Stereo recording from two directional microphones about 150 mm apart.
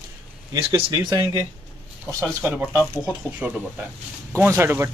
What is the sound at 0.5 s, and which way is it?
Speech, 30° right (ahead or behind).